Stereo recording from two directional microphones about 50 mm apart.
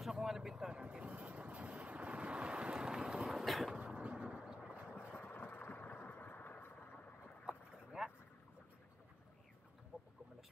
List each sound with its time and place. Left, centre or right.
0.0 s vehicle: centre
0.7 s vehicle: right
3.2 s a sound: centre
3.8 s vehicle: right
5.1 s vehicle: left
7.4 s boat: centre
9.9 s a sound: right